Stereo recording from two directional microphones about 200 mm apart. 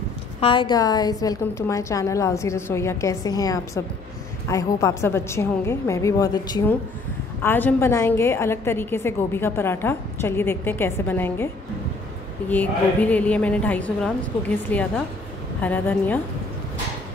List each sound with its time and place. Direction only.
0.4 s a woman's voice: 25° left (ahead or behind)
12.4 s a woman's voice: 10° left (ahead or behind)